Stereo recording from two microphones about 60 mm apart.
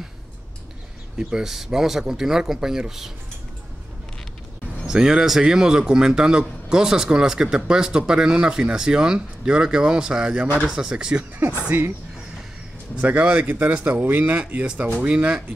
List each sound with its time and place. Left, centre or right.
1.1 s speech: centre
4.8 s speech: centre
11.7 s speech: right
12.9 s a man's voice: centre